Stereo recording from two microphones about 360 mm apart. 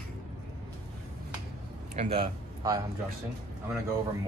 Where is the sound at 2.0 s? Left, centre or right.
Centre.